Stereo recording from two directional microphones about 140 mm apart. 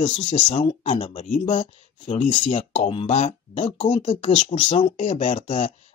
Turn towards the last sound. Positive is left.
turn(degrees=45)  # may be behind; listen again after turning